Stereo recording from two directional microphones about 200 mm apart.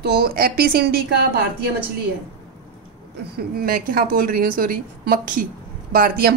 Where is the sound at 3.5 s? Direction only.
45° right (ahead or behind).